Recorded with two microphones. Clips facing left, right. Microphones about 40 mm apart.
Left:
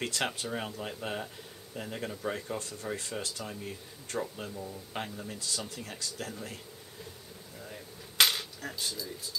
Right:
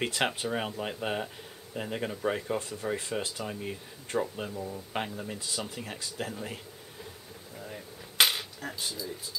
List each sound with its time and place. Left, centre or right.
0.0 s speech: centre
7.5 s cap gun: centre